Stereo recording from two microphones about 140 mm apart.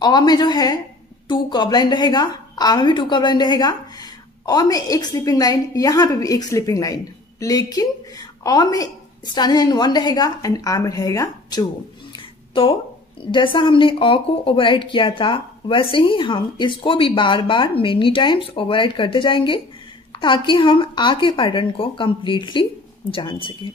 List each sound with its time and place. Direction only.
0.0 s a woman's voice: 30° left (ahead or behind)
12.6 s a woman's voice: 35° left (ahead or behind)